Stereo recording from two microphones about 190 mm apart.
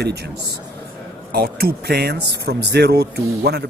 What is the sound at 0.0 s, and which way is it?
Speech, 60° right (ahead or behind).